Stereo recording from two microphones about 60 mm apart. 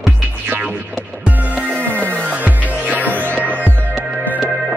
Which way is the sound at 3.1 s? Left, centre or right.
Left.